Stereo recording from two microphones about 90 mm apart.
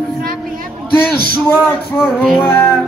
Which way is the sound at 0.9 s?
20° left (ahead or behind).